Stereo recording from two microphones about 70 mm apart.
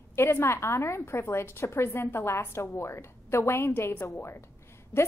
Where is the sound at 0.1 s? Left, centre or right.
Left.